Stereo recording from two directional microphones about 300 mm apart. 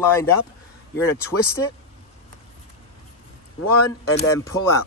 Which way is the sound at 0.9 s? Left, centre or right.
Left.